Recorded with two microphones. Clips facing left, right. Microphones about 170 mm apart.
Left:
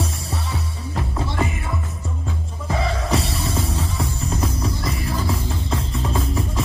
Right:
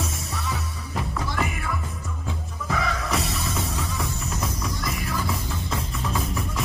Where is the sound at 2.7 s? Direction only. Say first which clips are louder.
Left 4 dB; 30° left (ahead or behind).